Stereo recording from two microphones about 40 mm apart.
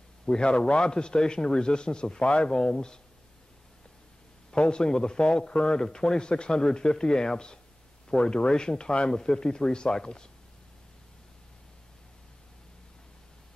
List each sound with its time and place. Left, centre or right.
0.3 s speech: left
4.5 s speech: left